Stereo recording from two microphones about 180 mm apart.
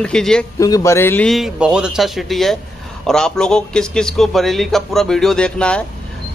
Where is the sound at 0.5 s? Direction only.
20° left (ahead or behind).